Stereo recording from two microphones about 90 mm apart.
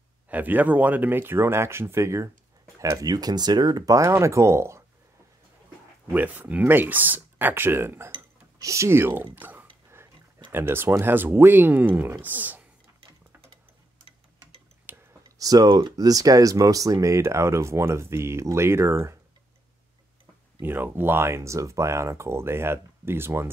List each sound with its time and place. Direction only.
0.3 s speech: 20° right (ahead or behind)
6.1 s speech: 20° right (ahead or behind)
14.9 s clicking: 20° right (ahead or behind)
15.3 s speech: 45° right (ahead or behind)
20.6 s speech: 25° right (ahead or behind)